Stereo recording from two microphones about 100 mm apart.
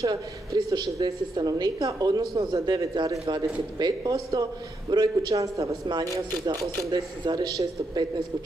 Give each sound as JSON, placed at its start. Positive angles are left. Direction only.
{"t": 0.0, "sound": "a woman's voice", "side_deg": -35}
{"t": 7.2, "sound": "a man's voice", "side_deg": -45}